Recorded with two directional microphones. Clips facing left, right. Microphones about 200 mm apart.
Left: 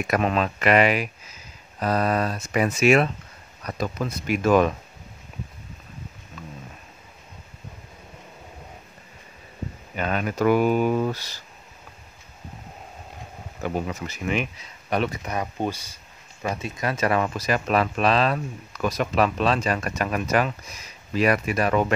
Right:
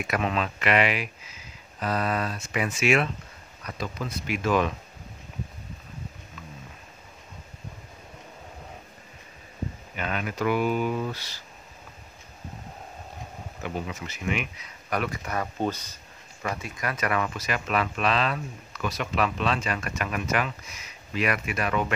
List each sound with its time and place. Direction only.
0.0 s speech: 45° left (ahead or behind)
9.9 s speech: 40° left (ahead or behind)
13.6 s speech: 40° left (ahead or behind); by 16.0 s 10° left (ahead or behind)
16.4 s speech: 25° left (ahead or behind)